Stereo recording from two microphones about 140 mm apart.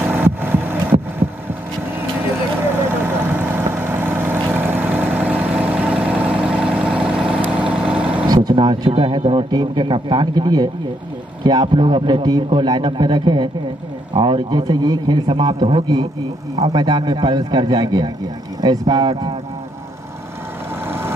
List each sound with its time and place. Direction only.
0.0 s vehicle: 15° right (ahead or behind)
3.0 s vehicle: 15° right (ahead or behind)
8.5 s a man's voice: 35° right (ahead or behind)
20.8 s vehicle: 15° right (ahead or behind)